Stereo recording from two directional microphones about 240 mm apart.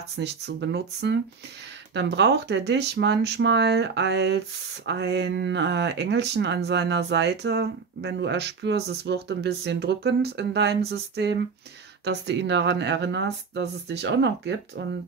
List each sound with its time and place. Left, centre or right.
0.2 s speech: right